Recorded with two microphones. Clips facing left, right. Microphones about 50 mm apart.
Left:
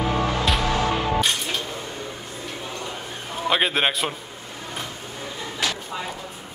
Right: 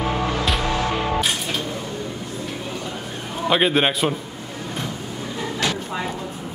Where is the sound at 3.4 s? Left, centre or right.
Centre.